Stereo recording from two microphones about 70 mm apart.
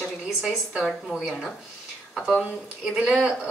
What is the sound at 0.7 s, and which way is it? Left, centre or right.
Speech, centre.